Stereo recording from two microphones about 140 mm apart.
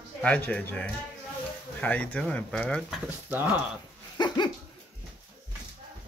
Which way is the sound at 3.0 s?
10° right (ahead or behind).